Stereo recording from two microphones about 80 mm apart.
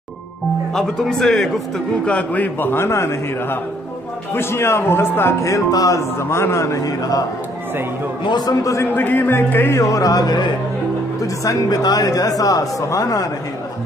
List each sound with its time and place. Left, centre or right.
0.7 s speech: centre
2.0 s a man's voice: centre; by 5.9 s left
6.1 s a man's voice: left
8.3 s a man's voice: left
8.9 s a man's voice: left
11.4 s speech: left